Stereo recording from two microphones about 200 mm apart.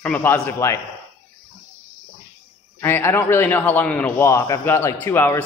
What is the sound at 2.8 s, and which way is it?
A man's voice, 10° left (ahead or behind).